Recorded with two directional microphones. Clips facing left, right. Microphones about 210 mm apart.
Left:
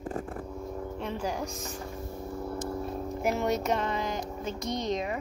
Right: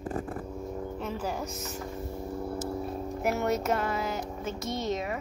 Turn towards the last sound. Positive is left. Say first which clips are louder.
# left 1 dB
turn(degrees=-5)  # may be behind; listen again after turning